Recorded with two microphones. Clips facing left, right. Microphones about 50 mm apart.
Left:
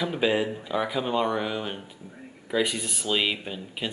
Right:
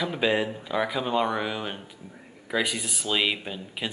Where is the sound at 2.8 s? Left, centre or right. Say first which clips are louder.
Even; centre.